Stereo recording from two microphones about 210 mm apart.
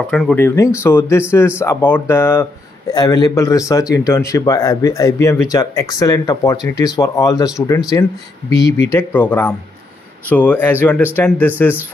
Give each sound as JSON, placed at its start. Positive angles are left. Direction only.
{"t": 0.1, "sound": "speech", "side_deg": 5}